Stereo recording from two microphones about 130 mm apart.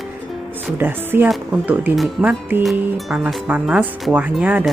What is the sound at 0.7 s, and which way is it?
Speech, 15° right (ahead or behind).